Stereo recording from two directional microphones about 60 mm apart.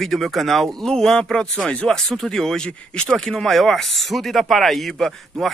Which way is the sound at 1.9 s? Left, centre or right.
Centre.